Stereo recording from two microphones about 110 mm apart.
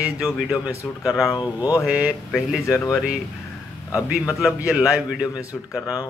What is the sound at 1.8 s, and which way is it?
Speech, 5° right (ahead or behind).